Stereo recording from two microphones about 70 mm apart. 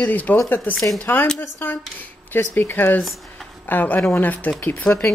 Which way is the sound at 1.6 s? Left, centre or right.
Left.